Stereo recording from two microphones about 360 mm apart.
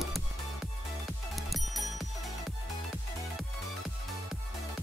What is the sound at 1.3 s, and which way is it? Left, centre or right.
Music, centre.